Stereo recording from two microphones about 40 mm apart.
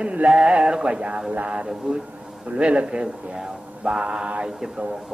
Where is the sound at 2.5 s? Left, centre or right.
Right.